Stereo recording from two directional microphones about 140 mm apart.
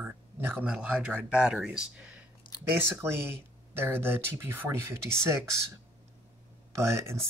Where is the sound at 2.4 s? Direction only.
35° left (ahead or behind).